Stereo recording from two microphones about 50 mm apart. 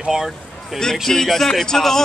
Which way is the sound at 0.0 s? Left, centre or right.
Centre.